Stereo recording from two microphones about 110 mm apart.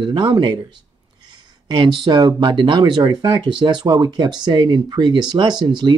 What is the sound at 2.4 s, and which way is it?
Speech, 45° right (ahead or behind).